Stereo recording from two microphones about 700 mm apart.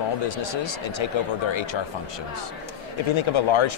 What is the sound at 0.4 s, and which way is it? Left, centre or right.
Speech, left.